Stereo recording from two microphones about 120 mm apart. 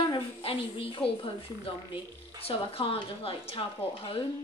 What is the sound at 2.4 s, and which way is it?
Speech, 50° left (ahead or behind).